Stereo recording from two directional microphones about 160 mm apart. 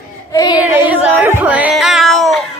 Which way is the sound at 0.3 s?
25° left (ahead or behind).